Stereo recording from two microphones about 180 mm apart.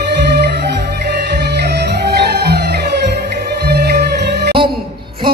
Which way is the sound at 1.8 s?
65° right (ahead or behind).